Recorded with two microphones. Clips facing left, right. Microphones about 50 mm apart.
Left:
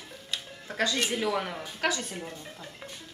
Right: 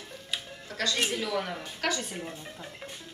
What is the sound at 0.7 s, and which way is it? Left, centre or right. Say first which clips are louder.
Speech: left 1 dB; left.